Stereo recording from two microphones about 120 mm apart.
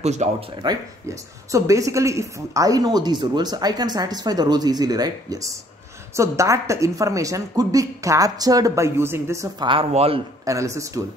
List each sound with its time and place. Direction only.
0.0 s speech: 70° right (ahead or behind)
0.6 s a woman's voice: 40° right (ahead or behind)
1.0 s a woman's voice: 25° right (ahead or behind)
9.6 s speech: 50° right (ahead or behind)
10.4 s a woman's voice: 25° right (ahead or behind)